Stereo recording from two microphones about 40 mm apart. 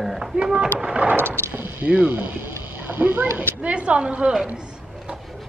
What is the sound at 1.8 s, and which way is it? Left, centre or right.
Speech, right.